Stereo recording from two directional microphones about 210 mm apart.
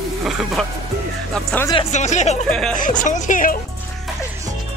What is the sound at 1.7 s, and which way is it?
Speech, 35° left (ahead or behind).